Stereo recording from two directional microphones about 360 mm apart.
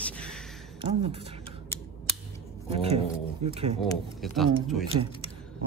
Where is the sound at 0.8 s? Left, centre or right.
Centre.